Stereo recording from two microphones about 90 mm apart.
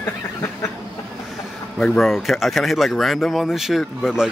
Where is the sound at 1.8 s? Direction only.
5° left (ahead or behind).